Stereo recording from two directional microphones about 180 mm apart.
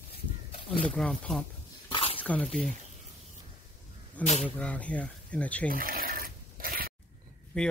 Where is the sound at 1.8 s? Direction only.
30° left (ahead or behind).